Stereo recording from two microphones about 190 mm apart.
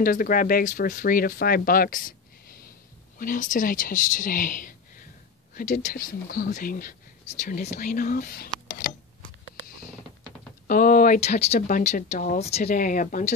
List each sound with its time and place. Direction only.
0.0 s speech: 50° left (ahead or behind)
10.7 s speech: 45° left (ahead or behind)